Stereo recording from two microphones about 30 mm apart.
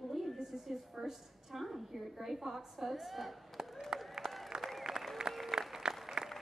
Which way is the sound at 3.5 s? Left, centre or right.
Centre.